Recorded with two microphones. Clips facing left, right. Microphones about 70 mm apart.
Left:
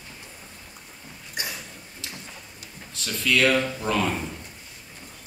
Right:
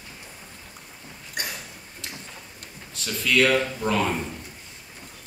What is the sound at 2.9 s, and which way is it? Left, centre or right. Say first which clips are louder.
A man's voice: left 1 dB; centre.